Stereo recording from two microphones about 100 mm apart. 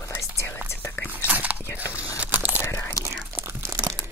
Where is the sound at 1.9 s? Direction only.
15° right (ahead or behind).